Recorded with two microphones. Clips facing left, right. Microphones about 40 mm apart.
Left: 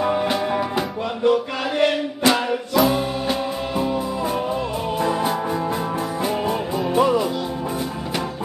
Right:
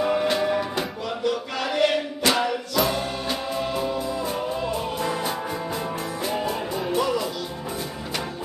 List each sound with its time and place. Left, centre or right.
0.0 s music: centre
1.2 s music: centre
6.9 s music: left